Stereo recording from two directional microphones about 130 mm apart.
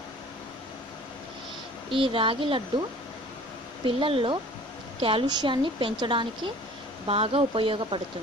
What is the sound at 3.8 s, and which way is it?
A woman's voice, 45° right (ahead or behind).